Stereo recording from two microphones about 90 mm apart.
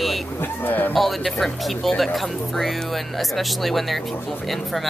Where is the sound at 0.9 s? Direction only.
Centre (ahead or behind).